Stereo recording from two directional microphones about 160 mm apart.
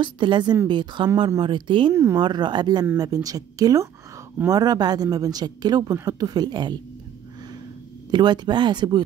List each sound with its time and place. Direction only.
0.0 s a woman's voice: 30° right (ahead or behind)
2.0 s speech: 15° right (ahead or behind)
2.2 s a woman's voice: 30° right (ahead or behind)
8.1 s a woman's voice: 25° right (ahead or behind)